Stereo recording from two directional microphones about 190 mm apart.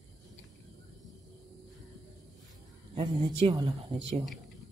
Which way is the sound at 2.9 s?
25° right (ahead or behind).